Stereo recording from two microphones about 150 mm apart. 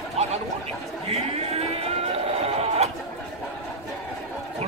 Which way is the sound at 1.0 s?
40° right (ahead or behind).